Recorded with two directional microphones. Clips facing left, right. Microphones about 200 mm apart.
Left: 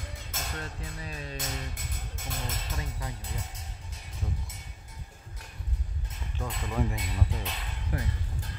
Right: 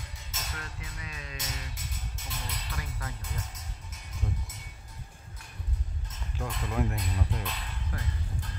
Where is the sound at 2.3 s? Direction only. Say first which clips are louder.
Left 4 dB; 45° left (ahead or behind).